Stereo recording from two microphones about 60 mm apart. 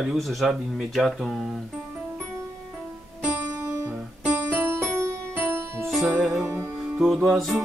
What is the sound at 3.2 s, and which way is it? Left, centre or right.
Music, right.